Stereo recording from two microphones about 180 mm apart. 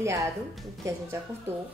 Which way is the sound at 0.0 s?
15° right (ahead or behind).